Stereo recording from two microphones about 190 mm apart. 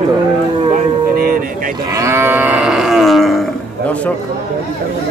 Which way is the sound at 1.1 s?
50° right (ahead or behind).